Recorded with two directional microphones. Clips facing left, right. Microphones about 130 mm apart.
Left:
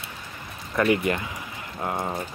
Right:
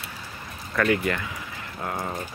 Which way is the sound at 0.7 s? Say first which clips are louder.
Left 1 dB; 20° left (ahead or behind).